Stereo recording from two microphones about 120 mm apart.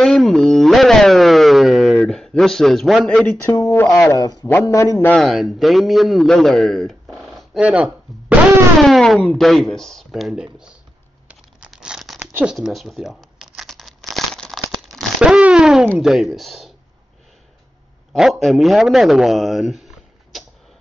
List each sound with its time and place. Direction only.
0.0 s a sound: 5° left (ahead or behind)
3.1 s speech: 10° left (ahead or behind)
3.5 s speech: 30° left (ahead or behind)
5.1 s a man's voice: centre (ahead or behind)
8.8 s speech: centre (ahead or behind)
11.7 s tearing: 5° right (ahead or behind)
12.2 s a sound: 15° right (ahead or behind)
12.5 s crumpling: centre (ahead or behind)
16.0 s speech: 5° right (ahead or behind)
18.1 s speech: centre (ahead or behind)